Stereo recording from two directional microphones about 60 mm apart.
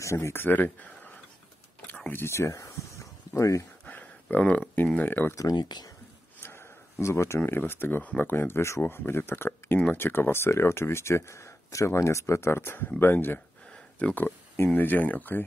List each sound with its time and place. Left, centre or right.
0.0 s speech: left
2.0 s speech: left
3.8 s a sound: left
4.9 s speech: left
5.3 s speech: left
6.4 s a sound: left
7.3 s speech: left
13.7 s a sound: centre
14.7 s speech: left